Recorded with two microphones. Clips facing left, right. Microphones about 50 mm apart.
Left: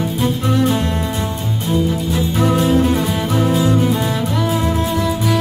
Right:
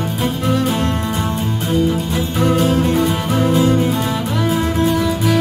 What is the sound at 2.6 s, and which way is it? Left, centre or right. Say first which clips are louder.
Music: even; centre.